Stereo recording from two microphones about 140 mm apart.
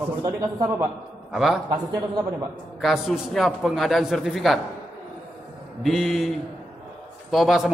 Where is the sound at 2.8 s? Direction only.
Centre (ahead or behind).